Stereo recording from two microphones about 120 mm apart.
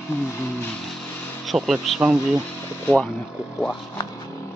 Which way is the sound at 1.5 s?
Centre (ahead or behind).